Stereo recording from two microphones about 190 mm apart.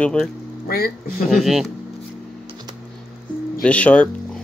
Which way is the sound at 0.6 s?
50° left (ahead or behind).